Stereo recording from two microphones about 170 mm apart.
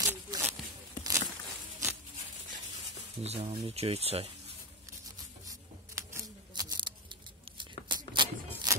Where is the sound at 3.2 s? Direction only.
40° right (ahead or behind).